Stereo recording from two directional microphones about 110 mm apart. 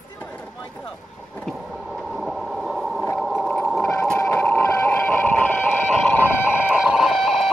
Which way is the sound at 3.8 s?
20° left (ahead or behind).